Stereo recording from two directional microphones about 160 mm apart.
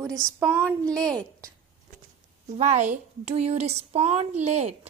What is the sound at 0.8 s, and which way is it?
Speech, 5° left (ahead or behind).